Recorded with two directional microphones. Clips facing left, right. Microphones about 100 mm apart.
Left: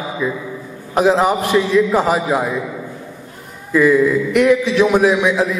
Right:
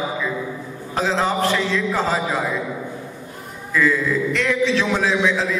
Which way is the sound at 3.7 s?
15° left (ahead or behind).